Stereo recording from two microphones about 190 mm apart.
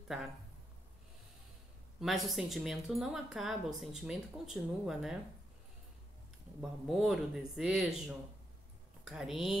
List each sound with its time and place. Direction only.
2.0 s speech: centre (ahead or behind)
6.6 s speech: centre (ahead or behind)